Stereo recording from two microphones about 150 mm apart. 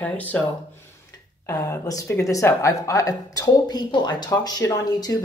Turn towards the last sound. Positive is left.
turn(degrees=25)  # may be behind; listen again after turning